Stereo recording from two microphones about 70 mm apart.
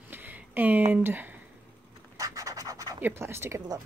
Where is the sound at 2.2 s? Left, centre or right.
Right.